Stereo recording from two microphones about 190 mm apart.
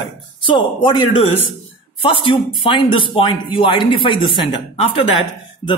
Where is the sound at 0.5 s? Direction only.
25° left (ahead or behind).